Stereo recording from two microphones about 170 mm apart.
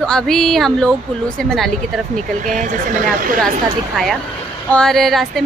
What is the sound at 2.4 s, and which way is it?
Speech, 50° right (ahead or behind).